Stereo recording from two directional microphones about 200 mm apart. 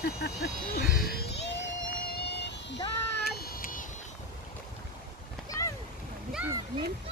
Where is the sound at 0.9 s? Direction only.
50° left (ahead or behind).